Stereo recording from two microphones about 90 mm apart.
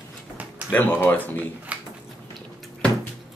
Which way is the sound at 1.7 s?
15° right (ahead or behind).